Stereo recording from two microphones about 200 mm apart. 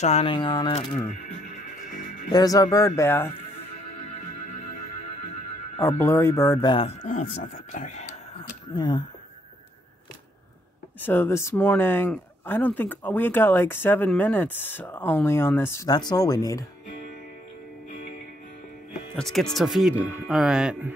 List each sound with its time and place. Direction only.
0.0 s speech: 30° left (ahead or behind)
2.3 s speech: 20° left (ahead or behind)
5.8 s speech: 10° left (ahead or behind)
6.7 s speech: 25° left (ahead or behind)
7.1 s speech: 40° left (ahead or behind)
8.7 s speech: 20° left (ahead or behind)
11.0 s speech: 10° left (ahead or behind)
19.1 s speech: centre (ahead or behind)